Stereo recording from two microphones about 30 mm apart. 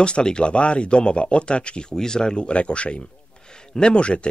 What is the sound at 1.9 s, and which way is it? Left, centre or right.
Speech, left.